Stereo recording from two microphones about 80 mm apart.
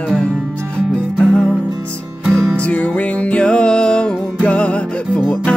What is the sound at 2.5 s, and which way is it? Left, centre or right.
Music, centre.